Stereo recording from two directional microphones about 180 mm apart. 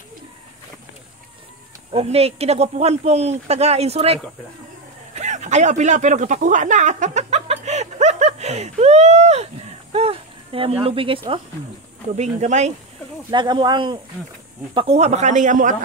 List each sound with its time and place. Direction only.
1.9 s speech: 35° right (ahead or behind)
5.1 s a sound: 40° right (ahead or behind)
9.9 s speech: 30° right (ahead or behind)
12.2 s speech: 40° right (ahead or behind)
13.3 s speech: 25° right (ahead or behind); by 15.7 s 45° right (ahead or behind)